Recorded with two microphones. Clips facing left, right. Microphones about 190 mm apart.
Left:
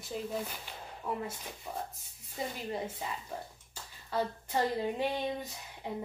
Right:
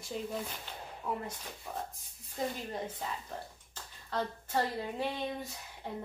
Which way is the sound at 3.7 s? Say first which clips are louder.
Left 2 dB; 10° left (ahead or behind).